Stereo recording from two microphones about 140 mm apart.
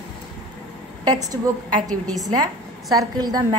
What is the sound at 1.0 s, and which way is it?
Speech, 25° right (ahead or behind).